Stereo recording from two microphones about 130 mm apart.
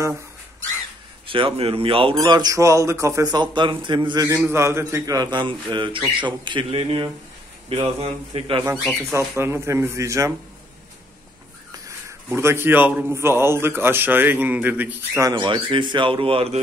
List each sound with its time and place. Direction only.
1.2 s speech: 40° right (ahead or behind)
2.1 s speech: 30° right (ahead or behind)
4.4 s speech: 20° right (ahead or behind); by 8.6 s 40° right (ahead or behind)
8.9 s speech: centre (ahead or behind)
9.4 s speech: 20° right (ahead or behind)
12.1 s a man's voice: 20° right (ahead or behind)
15.2 s speech: 35° right (ahead or behind)